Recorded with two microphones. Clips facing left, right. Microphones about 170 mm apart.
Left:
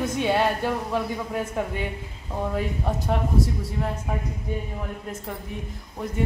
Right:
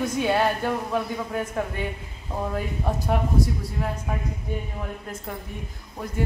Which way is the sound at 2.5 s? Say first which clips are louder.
Left 1 dB; centre (ahead or behind).